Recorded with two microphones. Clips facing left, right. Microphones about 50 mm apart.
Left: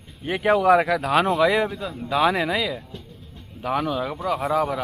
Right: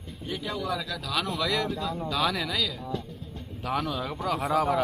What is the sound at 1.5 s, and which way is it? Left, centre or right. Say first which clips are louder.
Speech: left 5 dB; centre.